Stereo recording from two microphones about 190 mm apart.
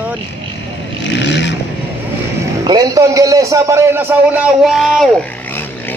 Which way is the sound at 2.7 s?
20° right (ahead or behind).